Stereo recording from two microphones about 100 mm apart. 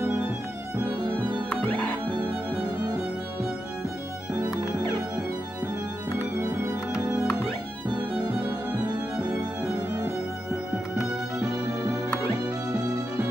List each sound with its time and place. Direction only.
1.6 s music: 20° left (ahead or behind)
2.0 s music: 10° right (ahead or behind)
4.3 s music: 10° right (ahead or behind)
6.9 s music: 10° right (ahead or behind)
11.4 s music: 5° right (ahead or behind)